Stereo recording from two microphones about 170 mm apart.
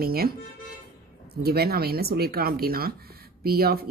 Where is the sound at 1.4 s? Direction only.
65° right (ahead or behind).